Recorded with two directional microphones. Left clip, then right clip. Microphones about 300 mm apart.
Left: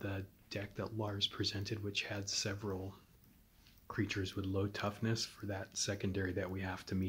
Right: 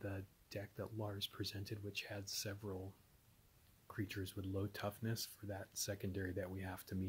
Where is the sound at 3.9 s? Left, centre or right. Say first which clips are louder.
Left 8 dB; right.